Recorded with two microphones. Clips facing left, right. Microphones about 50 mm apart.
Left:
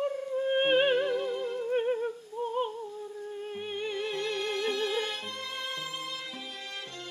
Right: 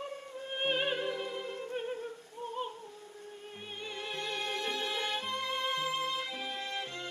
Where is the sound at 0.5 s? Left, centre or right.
Left.